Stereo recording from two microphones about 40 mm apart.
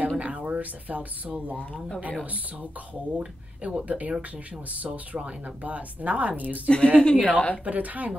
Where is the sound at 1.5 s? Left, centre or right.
Left.